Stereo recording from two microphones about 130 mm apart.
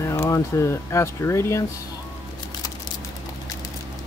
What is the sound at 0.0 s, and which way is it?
Speech, 20° left (ahead or behind).